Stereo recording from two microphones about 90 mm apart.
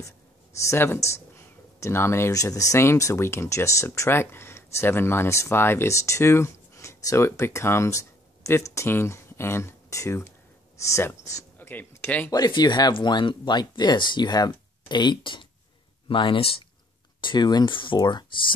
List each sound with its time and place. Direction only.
0.7 s speech: 30° left (ahead or behind)
11.5 s speech: 20° left (ahead or behind)
12.3 s speech: 50° left (ahead or behind)
12.9 s speech: 60° left (ahead or behind); by 16.6 s 80° left
17.2 s speech: 55° left (ahead or behind)
17.7 s speech: 60° left (ahead or behind)